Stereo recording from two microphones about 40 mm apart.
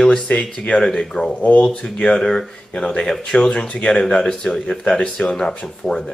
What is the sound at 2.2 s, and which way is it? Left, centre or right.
Speech, centre.